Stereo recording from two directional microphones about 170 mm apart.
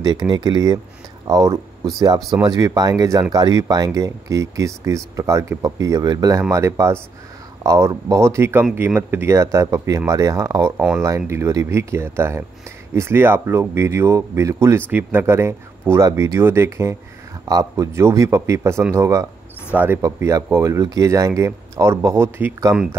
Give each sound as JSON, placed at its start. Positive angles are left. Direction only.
{"t": 0.0, "sound": "speech", "side_deg": -25}